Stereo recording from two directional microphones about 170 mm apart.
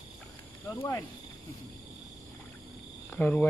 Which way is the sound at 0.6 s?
10° left (ahead or behind).